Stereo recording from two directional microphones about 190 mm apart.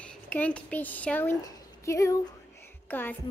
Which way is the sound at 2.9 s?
10° left (ahead or behind).